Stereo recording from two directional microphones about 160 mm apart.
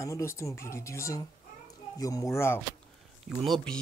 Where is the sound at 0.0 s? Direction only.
20° left (ahead or behind).